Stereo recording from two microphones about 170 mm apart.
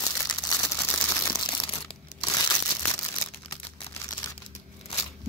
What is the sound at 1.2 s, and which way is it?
Crumpling, 25° left (ahead or behind).